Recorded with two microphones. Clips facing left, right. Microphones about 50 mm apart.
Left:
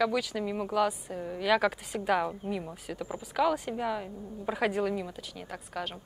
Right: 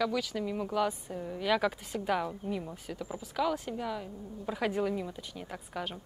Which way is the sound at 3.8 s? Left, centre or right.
Centre.